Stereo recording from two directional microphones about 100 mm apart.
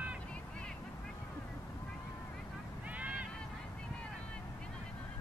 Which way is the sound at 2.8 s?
15° right (ahead or behind).